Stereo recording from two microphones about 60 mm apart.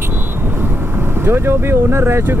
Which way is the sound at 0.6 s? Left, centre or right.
Right.